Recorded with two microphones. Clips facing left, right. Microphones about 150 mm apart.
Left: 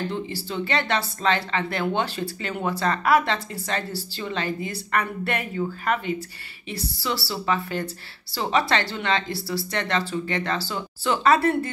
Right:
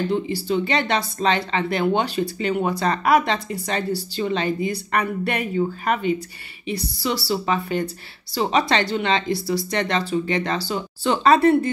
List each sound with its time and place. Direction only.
0.1 s speech: 15° right (ahead or behind)
6.7 s speech: 15° right (ahead or behind)